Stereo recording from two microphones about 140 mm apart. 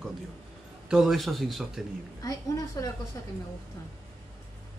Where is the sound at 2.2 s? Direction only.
25° left (ahead or behind).